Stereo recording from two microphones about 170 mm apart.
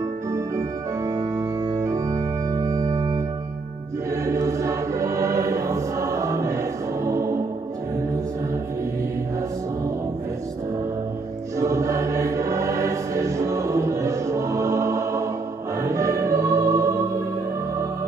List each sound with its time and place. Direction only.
0.3 s organ: 20° right (ahead or behind)
4.3 s choir: 20° right (ahead or behind)
7.1 s music: 15° right (ahead or behind)
11.6 s music: 20° right (ahead or behind)